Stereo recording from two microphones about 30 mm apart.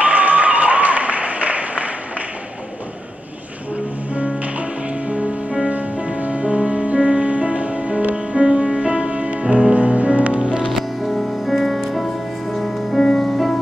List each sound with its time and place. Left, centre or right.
0.0 s applause: right
5.9 s music: right
7.2 s music: right
8.9 s music: right
10.7 s music: centre